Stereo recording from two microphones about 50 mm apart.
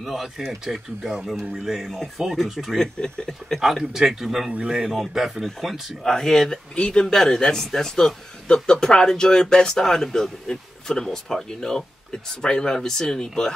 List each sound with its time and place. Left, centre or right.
0.0 s speech: centre
2.8 s a man's voice: centre
3.6 s speech: centre
4.5 s speech: right
4.7 s speech: centre
6.0 s a man's voice: centre
6.7 s a man's voice: centre